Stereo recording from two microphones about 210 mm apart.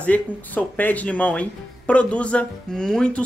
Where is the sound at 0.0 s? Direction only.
5° left (ahead or behind).